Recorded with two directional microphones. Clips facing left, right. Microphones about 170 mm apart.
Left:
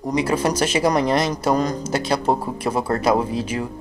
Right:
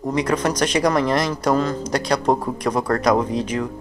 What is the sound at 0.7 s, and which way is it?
Speech, 25° left (ahead or behind).